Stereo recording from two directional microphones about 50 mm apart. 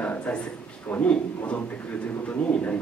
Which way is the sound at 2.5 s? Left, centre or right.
Left.